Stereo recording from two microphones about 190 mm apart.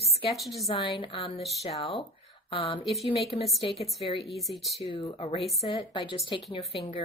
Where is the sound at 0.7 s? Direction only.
25° left (ahead or behind).